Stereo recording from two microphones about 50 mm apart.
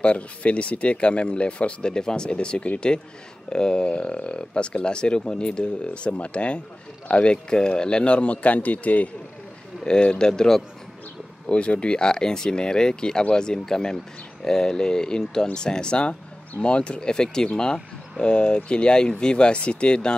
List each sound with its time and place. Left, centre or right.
0.0 s speech: left
9.8 s speech: centre
11.4 s speech: left